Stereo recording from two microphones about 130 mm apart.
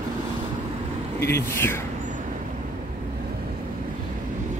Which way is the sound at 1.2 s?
20° left (ahead or behind).